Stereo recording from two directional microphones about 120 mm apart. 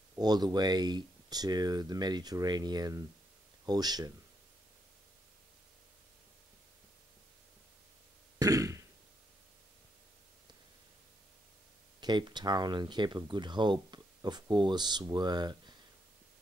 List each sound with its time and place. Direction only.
0.2 s speech: 35° right (ahead or behind)
8.4 s throat clearing: 30° right (ahead or behind)
12.0 s speech: 40° right (ahead or behind)